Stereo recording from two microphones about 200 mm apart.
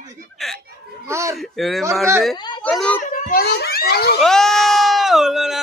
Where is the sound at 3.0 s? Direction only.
40° left (ahead or behind).